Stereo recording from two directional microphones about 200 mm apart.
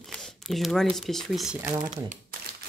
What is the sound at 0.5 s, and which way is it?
Speech, centre (ahead or behind).